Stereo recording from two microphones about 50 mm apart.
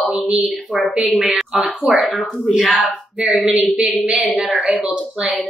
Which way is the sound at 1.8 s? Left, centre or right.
Left.